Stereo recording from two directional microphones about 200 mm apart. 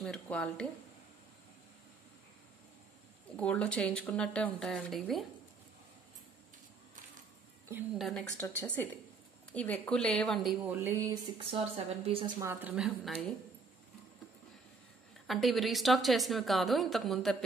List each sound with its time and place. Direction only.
0.0 s a woman's voice: 5° left (ahead or behind)
3.3 s a woman's voice: 5° left (ahead or behind)
8.0 s a woman's voice: 5° left (ahead or behind)
11.3 s a woman's voice: 25° right (ahead or behind)
12.4 s a woman's voice: 10° right (ahead or behind)
15.2 s a woman's voice: centre (ahead or behind)